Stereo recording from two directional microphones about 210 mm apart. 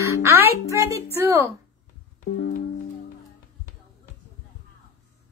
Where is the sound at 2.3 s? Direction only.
45° left (ahead or behind).